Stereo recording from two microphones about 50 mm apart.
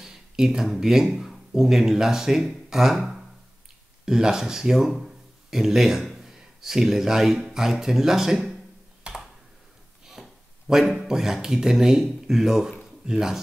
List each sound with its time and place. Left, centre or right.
0.0 s speech: centre
9.1 s computer keyboard: right
10.0 s speech: centre